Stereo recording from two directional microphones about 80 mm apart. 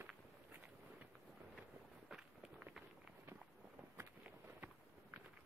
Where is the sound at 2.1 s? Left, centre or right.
Centre.